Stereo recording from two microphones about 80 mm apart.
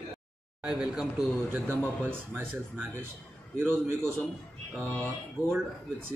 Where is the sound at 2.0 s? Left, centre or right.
Right.